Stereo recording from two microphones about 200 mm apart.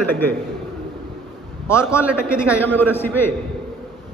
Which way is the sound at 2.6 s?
10° left (ahead or behind).